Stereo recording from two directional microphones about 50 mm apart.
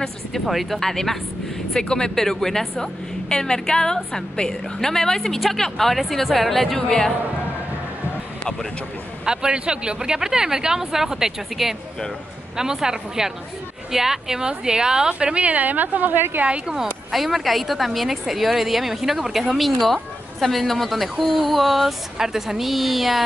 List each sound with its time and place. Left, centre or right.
0.5 s a woman's voice: centre
0.7 s a woman's voice: centre
9.2 s a woman's voice: centre; by 16.4 s right
16.4 s a woman's voice: right
17.1 s a woman's voice: centre